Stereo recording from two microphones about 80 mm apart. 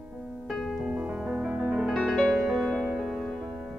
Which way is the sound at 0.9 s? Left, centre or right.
Centre.